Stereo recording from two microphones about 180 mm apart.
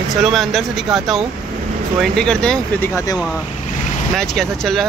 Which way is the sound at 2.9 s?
20° left (ahead or behind).